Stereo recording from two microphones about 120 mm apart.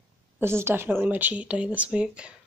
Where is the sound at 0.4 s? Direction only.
20° right (ahead or behind).